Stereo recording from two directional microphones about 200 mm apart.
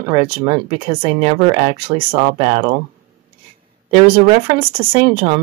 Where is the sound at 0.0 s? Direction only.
20° right (ahead or behind).